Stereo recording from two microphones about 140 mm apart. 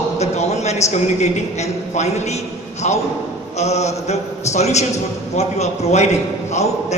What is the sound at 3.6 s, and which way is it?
Speech, 50° left (ahead or behind).